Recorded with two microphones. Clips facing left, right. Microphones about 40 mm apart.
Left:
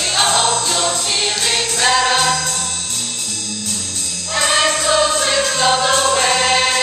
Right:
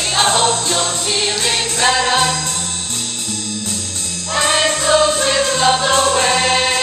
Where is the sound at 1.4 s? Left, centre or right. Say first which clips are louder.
Even; centre.